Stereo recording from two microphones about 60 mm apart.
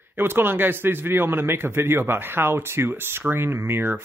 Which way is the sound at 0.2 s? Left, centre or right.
Right.